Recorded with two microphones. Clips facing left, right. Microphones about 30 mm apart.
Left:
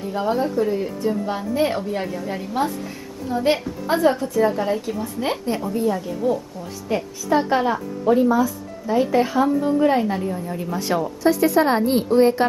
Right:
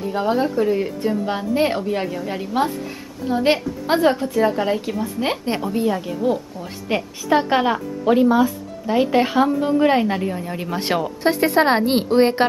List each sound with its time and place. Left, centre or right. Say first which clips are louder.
0.1 s a woman's voice: right 1 dB; right
1.0 s a woman's voice: right 1 dB; right
1.9 s a woman's voice: right 2 dB; centre
5.4 s a woman's voice: right 1 dB; right
8.0 s a woman's voice: right 2 dB; right